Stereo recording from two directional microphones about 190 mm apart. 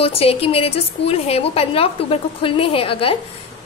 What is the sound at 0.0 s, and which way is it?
A woman's voice, 30° left (ahead or behind).